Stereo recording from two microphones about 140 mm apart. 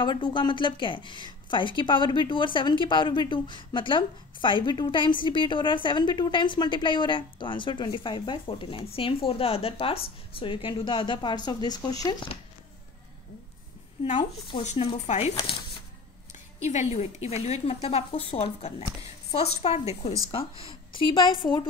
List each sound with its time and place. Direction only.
0.0 s speech: 35° left (ahead or behind)
14.0 s speech: 40° left (ahead or behind)
14.6 s a woman's voice: 55° left (ahead or behind)
16.6 s a woman's voice: 55° left (ahead or behind); by 21.5 s 35° left (ahead or behind)